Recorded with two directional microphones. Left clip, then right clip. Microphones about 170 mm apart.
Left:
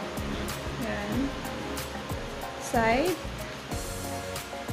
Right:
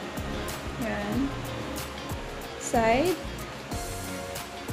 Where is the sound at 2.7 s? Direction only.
20° right (ahead or behind).